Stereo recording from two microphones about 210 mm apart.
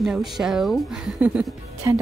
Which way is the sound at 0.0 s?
Centre (ahead or behind).